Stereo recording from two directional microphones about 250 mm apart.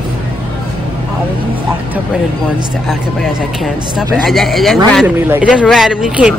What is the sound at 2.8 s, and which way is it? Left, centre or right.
Speech, centre.